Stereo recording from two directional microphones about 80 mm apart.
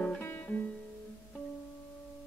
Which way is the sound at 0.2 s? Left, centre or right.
Left.